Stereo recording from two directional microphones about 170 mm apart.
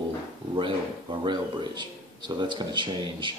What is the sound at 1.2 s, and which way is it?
Speech, 25° right (ahead or behind).